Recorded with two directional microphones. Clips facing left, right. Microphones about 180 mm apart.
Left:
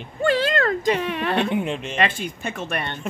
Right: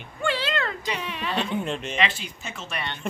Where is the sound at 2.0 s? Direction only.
50° left (ahead or behind).